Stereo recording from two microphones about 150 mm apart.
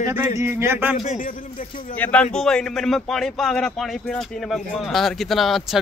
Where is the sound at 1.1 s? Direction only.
60° left (ahead or behind).